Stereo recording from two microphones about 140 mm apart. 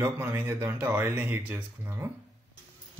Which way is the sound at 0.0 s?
20° right (ahead or behind).